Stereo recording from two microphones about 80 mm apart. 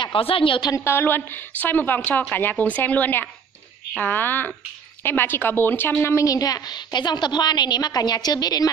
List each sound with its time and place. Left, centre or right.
0.0 s a woman's voice: left
0.7 s speech: left
6.2 s a woman's voice: left